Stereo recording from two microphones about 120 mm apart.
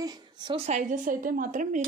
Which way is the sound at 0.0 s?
35° right (ahead or behind).